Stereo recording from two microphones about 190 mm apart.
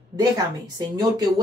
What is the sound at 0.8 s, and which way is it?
Speech, 20° right (ahead or behind).